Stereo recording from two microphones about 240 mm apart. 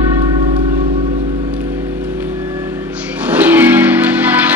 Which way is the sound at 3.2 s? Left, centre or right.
Centre.